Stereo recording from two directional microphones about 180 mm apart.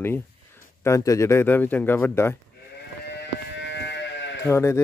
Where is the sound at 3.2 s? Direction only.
70° left (ahead or behind).